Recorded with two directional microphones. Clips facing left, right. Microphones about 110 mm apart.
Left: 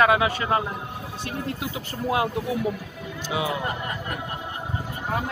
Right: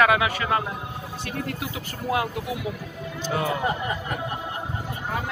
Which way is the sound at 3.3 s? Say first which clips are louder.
Right 1 dB; 5° left (ahead or behind).